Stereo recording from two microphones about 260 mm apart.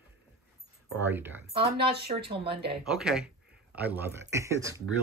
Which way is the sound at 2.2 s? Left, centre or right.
Right.